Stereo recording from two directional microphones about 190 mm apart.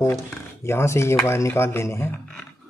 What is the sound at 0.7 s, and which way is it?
Speech, 15° left (ahead or behind).